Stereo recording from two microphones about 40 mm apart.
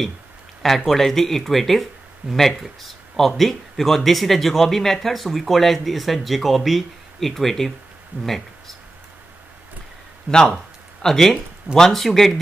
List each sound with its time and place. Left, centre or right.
0.6 s speech: centre
8.1 s speech: right
10.3 s speech: centre